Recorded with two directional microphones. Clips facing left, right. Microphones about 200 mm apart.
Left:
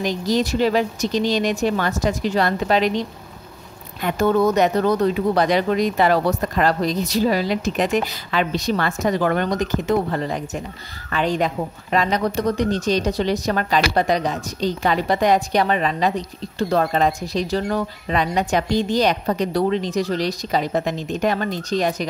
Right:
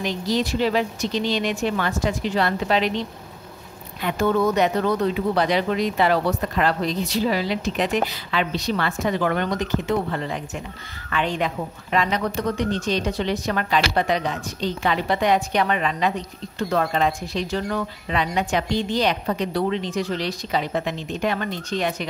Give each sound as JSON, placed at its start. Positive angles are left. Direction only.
{"t": 0.0, "sound": "speech", "side_deg": 45}
{"t": 4.0, "sound": "a woman's voice", "side_deg": 40}